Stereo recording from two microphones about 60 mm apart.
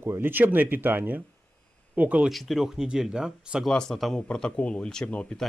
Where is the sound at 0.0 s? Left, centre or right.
Right.